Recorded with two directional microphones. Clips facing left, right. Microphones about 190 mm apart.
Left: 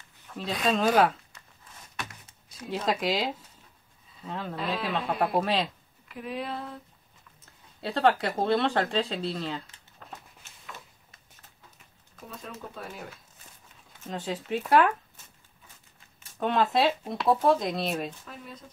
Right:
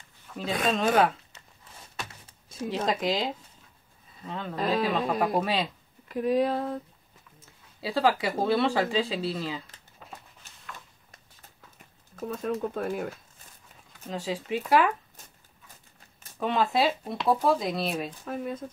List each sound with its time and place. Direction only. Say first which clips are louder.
0.3 s a sound: even; 5° left (ahead or behind)
0.7 s speech: left 1 dB; centre (ahead or behind)
2.7 s speech: even; centre (ahead or behind)
6.0 s speech: right 10 dB; 40° right (ahead or behind)
7.8 s speech: left 1 dB; centre (ahead or behind)
12.2 s speech: right 12 dB; 50° right (ahead or behind)
14.0 s speech: right 1 dB; centre (ahead or behind)
16.3 s speech: even; centre (ahead or behind)
18.2 s speech: right 11 dB; 50° right (ahead or behind)